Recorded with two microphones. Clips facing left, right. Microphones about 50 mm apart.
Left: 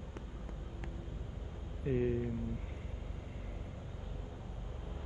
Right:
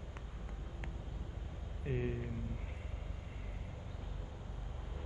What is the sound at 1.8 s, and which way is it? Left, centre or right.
Speech, centre.